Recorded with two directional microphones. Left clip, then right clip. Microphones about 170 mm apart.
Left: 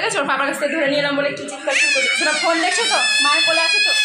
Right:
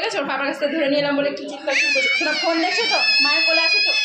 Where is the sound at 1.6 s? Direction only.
10° right (ahead or behind).